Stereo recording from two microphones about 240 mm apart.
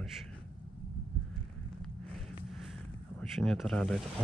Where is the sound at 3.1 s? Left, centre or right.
Centre.